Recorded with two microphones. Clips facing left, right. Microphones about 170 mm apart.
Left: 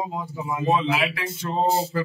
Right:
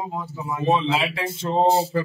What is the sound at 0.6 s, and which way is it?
Speech, 25° right (ahead or behind).